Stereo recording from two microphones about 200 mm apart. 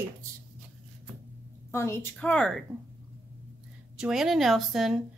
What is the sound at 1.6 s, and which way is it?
Speech, 15° left (ahead or behind).